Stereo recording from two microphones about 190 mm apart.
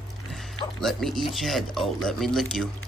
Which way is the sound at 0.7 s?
Centre (ahead or behind).